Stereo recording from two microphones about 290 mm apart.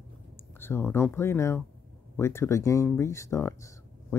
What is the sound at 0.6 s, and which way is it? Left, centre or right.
Speech, centre.